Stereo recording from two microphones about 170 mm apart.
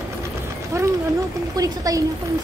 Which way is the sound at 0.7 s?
20° right (ahead or behind).